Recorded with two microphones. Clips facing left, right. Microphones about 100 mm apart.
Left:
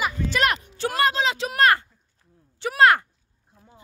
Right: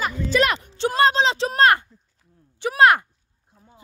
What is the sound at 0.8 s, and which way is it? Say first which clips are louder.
A woman's voice: right 4 dB; 25° right (ahead or behind).